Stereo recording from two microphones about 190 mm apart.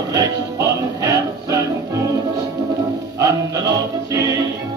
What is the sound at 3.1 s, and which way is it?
Music, 15° right (ahead or behind).